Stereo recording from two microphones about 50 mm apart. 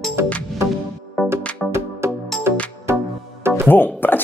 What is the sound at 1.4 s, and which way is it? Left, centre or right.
Music, left.